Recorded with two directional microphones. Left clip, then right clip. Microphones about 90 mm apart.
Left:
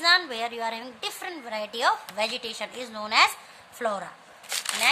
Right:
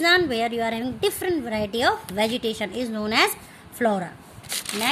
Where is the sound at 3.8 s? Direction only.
50° right (ahead or behind).